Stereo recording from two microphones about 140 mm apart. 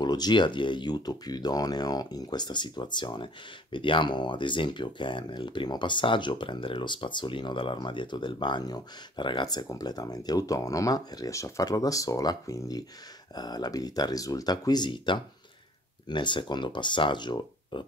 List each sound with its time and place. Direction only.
0.0 s speech: 30° left (ahead or behind)